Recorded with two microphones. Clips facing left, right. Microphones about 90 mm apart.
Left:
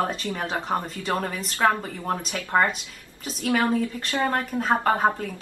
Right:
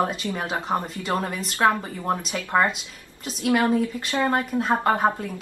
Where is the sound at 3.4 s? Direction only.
15° right (ahead or behind).